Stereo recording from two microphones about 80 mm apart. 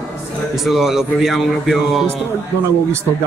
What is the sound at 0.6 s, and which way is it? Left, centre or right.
Speech, centre.